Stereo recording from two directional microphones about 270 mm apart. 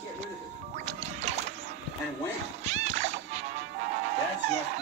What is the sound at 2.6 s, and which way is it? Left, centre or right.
Music, right.